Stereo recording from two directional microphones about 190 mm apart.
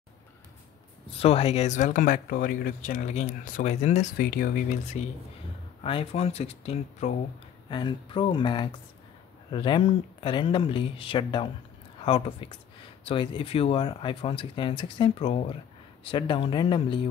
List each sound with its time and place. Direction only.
1.2 s speech: 30° left (ahead or behind)
5.8 s speech: 30° left (ahead or behind)
7.7 s speech: 25° left (ahead or behind)